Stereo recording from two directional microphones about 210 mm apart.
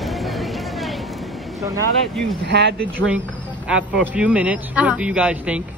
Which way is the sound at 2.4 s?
55° right (ahead or behind).